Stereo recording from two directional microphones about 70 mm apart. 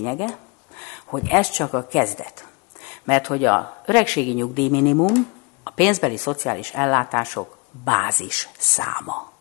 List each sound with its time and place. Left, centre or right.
0.0 s a sound: centre
1.7 s speech: left
8.2 s speech: centre